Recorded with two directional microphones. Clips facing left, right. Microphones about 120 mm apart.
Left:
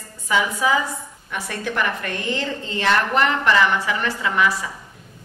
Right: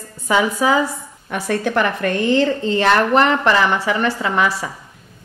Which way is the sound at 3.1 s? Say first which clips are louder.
Right 4 dB; 35° right (ahead or behind).